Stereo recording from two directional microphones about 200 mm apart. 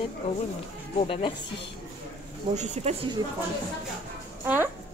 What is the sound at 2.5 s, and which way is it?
Speech, 35° right (ahead or behind).